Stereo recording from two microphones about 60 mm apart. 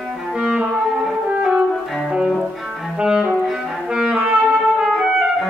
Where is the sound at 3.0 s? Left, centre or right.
Centre.